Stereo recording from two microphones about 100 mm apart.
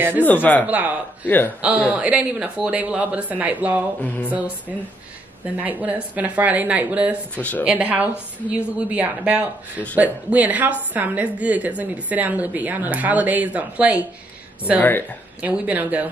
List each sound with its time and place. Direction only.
0.2 s speech: 15° left (ahead or behind)
0.7 s a woman's voice: 15° right (ahead or behind)
1.2 s a woman's voice: 20° left (ahead or behind)
1.6 s a woman's voice: 10° right (ahead or behind)
7.3 s speech: 15° left (ahead or behind)
7.6 s a woman's voice: 15° right (ahead or behind)
14.8 s a woman's voice: 20° left (ahead or behind)
15.4 s a woman's voice: 15° right (ahead or behind)